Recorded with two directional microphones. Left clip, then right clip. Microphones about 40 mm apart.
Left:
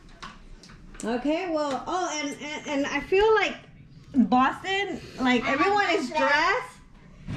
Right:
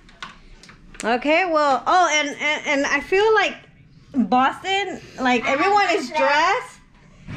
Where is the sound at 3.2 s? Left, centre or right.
Left.